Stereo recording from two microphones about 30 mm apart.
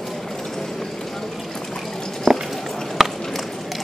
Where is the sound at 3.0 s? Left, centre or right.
Centre.